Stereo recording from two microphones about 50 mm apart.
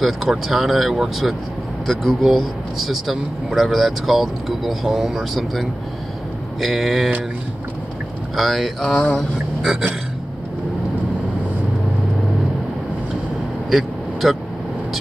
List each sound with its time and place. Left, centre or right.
0.0 s speech: centre
6.6 s speech: centre
8.4 s speech: centre
8.9 s a sound: centre
13.7 s vehicle: centre